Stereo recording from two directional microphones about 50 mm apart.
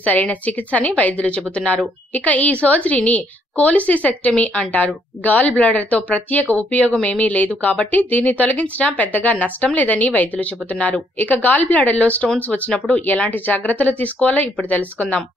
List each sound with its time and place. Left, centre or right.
0.0 s a woman's voice: left